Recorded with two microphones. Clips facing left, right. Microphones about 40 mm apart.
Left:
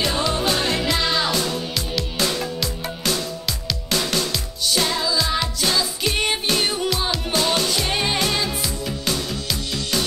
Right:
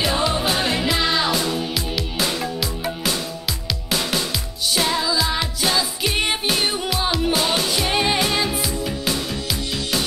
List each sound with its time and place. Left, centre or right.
0.0 s music: centre